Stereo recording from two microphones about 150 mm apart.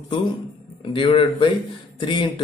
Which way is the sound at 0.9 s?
35° left (ahead or behind).